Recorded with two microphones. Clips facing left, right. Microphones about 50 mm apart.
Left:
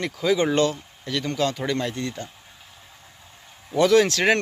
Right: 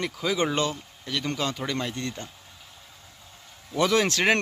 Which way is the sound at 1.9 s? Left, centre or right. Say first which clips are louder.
Left 3 dB; centre.